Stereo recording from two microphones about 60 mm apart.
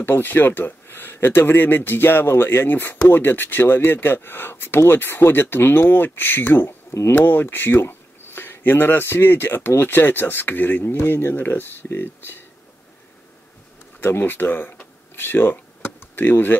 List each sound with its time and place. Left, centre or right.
0.0 s speech: left
13.9 s speech: left
15.1 s a sound: left
16.3 s speech: left